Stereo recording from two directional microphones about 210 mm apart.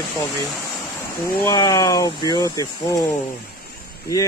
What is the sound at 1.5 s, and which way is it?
Speech, 15° left (ahead or behind).